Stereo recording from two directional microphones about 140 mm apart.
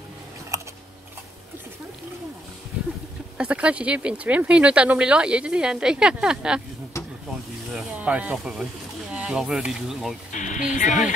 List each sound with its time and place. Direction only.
0.5 s a sound: 20° right (ahead or behind)
3.3 s speech: 10° right (ahead or behind)
7.7 s snake: 10° right (ahead or behind)
9.1 s speech: 5° right (ahead or behind)
10.3 s speech: 65° left (ahead or behind)